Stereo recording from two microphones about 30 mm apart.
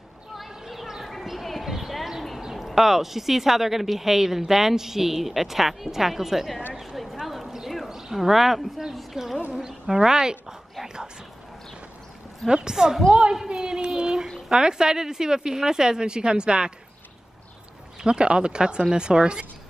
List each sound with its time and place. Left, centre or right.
0.4 s a sound: centre
1.4 s clip-clop: centre
2.5 s a woman's voice: centre
7.2 s clip-clop: centre
7.9 s a woman's voice: centre
9.5 s speech: centre
12.4 s speech: right
18.0 s speech: right